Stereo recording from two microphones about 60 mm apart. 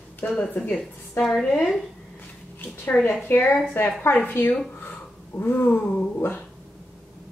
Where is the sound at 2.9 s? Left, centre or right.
Left.